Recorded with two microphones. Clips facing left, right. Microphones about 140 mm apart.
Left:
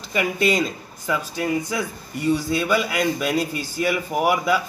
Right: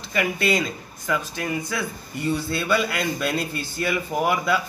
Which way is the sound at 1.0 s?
20° left (ahead or behind).